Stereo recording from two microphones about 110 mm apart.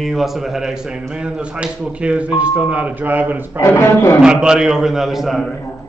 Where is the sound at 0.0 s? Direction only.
Centre (ahead or behind); by 3.6 s 15° right (ahead or behind).